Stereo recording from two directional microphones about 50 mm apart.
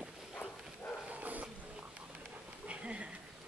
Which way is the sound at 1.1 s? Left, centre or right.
Right.